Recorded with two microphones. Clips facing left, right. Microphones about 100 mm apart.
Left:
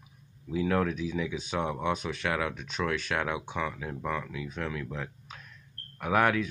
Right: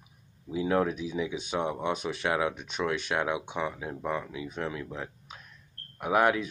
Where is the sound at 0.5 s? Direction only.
15° right (ahead or behind).